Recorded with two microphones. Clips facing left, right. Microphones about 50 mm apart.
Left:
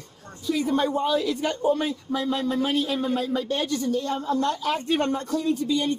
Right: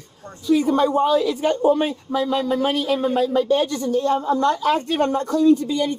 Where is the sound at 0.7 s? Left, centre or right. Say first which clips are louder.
Right 3 dB; right.